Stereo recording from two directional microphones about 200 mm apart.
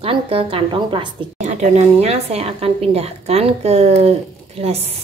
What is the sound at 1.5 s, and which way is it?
A woman's voice, 35° right (ahead or behind).